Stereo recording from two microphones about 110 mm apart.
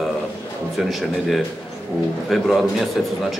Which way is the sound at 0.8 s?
Centre (ahead or behind).